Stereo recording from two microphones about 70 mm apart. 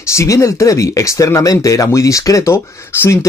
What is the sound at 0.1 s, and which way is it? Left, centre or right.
Speech, left.